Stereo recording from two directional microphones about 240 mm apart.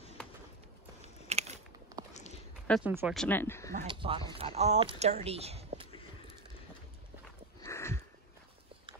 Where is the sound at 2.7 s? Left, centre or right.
Centre.